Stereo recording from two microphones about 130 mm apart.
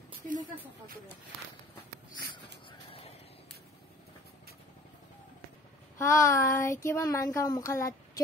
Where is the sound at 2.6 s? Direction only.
45° left (ahead or behind).